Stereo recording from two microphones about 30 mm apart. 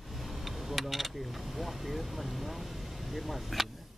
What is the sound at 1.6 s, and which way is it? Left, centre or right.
Speech, centre.